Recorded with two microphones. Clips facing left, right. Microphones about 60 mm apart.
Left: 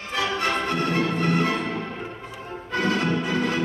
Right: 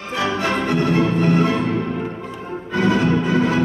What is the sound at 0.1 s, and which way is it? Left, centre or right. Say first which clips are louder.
Music: right 4 dB; right.